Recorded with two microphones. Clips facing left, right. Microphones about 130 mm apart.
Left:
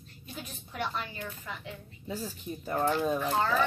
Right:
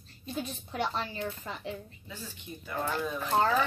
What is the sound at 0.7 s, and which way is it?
Speech, 30° right (ahead or behind).